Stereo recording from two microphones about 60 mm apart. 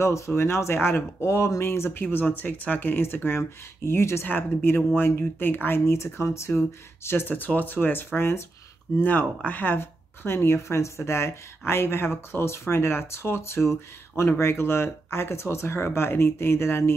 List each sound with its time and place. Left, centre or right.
0.3 s speech: left
3.3 s speech: left
7.2 s speech: left